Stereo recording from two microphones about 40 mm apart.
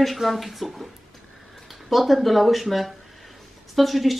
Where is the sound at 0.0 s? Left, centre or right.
Centre.